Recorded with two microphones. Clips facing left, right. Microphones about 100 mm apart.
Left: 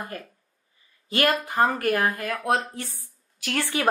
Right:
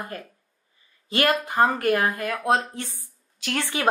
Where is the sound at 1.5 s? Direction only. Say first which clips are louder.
Right 2 dB; 25° right (ahead or behind).